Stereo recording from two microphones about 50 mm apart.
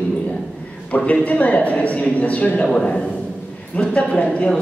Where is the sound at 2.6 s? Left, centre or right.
Centre.